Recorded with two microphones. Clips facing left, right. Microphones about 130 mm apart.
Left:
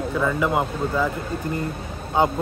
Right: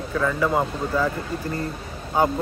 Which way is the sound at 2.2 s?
25° left (ahead or behind).